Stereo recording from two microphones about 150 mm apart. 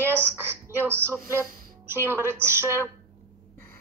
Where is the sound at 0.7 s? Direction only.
15° right (ahead or behind).